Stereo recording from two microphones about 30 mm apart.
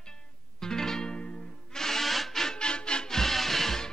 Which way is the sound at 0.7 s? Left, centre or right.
Centre.